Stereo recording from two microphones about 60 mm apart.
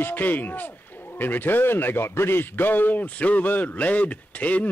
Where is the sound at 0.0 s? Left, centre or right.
Left.